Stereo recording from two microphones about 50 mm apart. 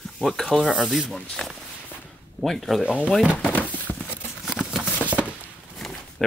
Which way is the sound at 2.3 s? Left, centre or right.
Centre.